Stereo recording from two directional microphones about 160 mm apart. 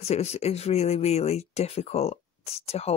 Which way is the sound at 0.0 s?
40° left (ahead or behind).